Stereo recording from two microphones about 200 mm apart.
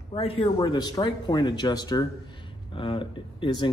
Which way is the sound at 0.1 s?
30° left (ahead or behind).